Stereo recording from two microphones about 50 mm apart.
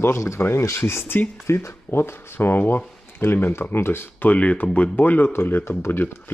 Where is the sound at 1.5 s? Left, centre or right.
Left.